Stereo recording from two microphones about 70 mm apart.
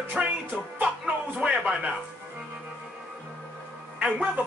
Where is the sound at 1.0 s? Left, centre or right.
Centre.